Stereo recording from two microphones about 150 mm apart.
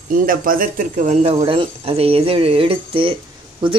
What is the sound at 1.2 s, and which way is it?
Speech, 40° right (ahead or behind).